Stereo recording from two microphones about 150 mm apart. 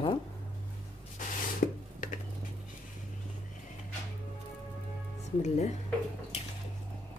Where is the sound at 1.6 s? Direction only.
70° left (ahead or behind).